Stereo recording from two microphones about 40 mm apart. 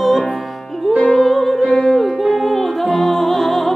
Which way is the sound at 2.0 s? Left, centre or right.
Centre.